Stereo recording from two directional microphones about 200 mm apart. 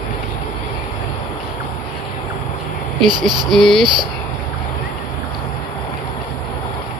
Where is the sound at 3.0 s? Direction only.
20° right (ahead or behind).